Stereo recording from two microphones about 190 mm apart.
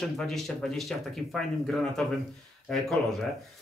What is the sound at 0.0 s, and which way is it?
Speech, centre (ahead or behind).